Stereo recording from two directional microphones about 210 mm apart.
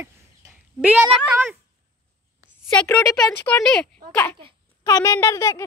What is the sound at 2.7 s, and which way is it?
Speech, 5° left (ahead or behind).